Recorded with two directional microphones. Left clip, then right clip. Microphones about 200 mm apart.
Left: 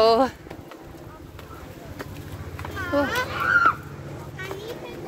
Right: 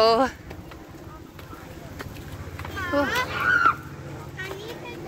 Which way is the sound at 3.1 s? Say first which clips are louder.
Even; 55° left (ahead or behind).